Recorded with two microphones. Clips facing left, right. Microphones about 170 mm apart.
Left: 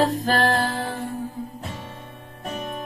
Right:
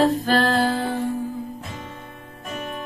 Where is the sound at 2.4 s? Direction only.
35° left (ahead or behind).